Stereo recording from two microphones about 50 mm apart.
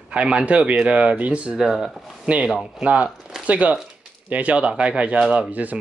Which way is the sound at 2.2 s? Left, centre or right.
Right.